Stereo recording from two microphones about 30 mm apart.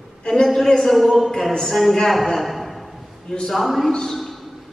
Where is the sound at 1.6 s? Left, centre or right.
Centre.